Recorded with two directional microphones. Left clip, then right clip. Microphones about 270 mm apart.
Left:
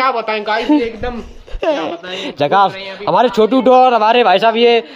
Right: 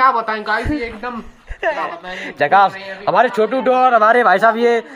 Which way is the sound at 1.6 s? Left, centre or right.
Left.